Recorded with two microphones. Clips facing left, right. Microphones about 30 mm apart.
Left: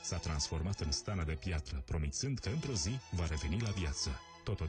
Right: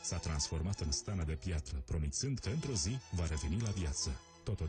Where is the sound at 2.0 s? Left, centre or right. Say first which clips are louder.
Even; centre.